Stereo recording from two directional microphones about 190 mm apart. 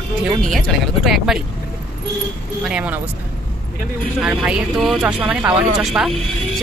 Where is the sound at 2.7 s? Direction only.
5° right (ahead or behind).